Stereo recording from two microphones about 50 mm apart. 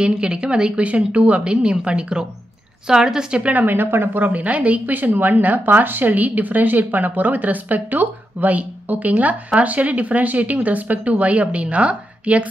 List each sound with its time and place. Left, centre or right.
0.0 s a woman's voice: centre
3.6 s a woman's voice: right